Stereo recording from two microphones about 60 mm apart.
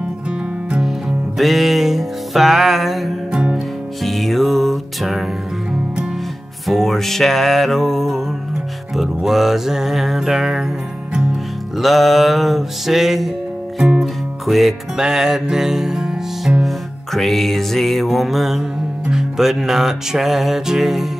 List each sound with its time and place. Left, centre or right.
0.7 s music: centre
3.3 s music: centre
4.0 s music: centre
6.7 s music: centre
11.8 s music: centre
14.4 s music: centre
16.6 s music: centre